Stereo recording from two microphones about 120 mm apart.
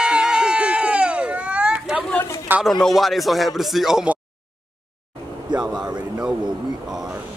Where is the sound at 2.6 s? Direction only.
Centre (ahead or behind).